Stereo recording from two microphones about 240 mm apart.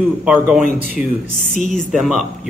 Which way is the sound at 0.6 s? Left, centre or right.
Left.